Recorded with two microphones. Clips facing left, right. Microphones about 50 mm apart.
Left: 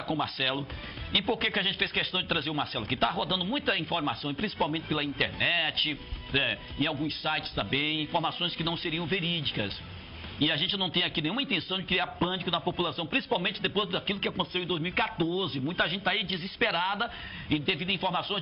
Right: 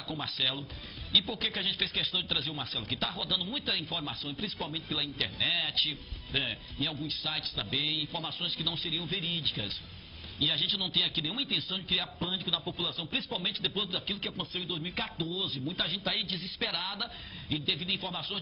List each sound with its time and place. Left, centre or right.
0.2 s speech: left